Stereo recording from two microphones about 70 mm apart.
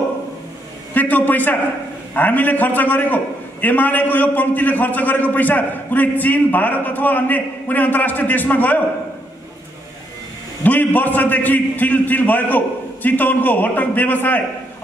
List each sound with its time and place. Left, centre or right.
0.9 s a man's voice: left
10.6 s a man's voice: left